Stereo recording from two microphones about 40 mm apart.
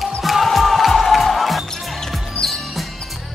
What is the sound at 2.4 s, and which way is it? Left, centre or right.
Music, left.